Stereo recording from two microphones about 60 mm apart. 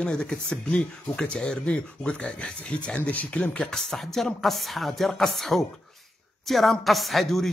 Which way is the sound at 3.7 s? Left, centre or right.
Centre.